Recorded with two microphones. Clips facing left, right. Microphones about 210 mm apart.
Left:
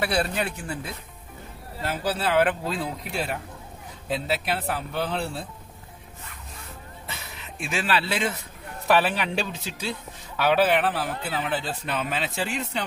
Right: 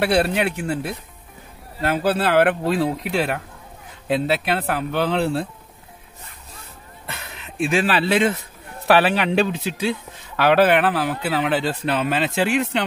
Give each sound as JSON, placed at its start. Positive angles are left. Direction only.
{"t": 0.0, "sound": "speech", "side_deg": -65}
{"t": 7.2, "sound": "speech", "side_deg": -80}
{"t": 8.8, "sound": "speech", "side_deg": -80}